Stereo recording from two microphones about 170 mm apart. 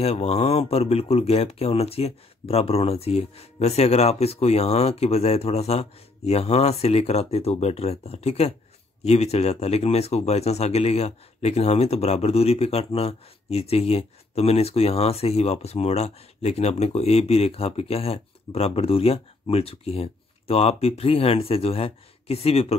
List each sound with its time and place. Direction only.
0.0 s speech: 35° left (ahead or behind)